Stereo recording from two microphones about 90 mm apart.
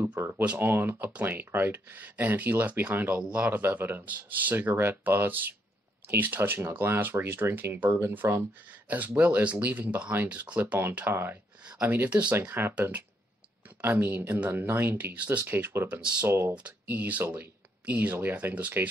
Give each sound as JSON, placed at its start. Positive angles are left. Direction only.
{"t": 0.2, "sound": "speech", "side_deg": -20}
{"t": 16.5, "sound": "speech", "side_deg": -15}